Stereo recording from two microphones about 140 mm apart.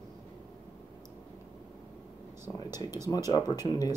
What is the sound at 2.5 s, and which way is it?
Speech, 25° left (ahead or behind).